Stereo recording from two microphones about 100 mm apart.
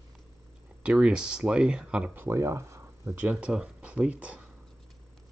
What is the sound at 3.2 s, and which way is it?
Speech, 10° right (ahead or behind).